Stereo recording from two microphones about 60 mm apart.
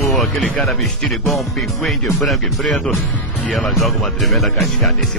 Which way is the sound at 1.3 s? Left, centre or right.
Centre.